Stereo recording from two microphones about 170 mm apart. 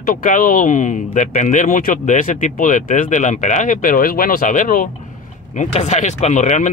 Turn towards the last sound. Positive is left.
turn(degrees=45)  # may be behind; listen again after turning